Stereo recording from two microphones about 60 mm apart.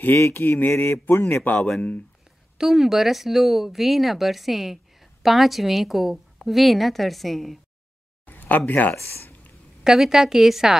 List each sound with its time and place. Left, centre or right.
0.0 s a sound: left
2.5 s speech: centre
8.3 s speech: left
9.8 s speech: centre